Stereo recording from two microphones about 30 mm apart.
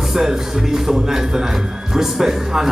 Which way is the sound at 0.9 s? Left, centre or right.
Centre.